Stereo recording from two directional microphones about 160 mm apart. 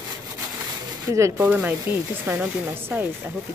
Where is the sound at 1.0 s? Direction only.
20° right (ahead or behind).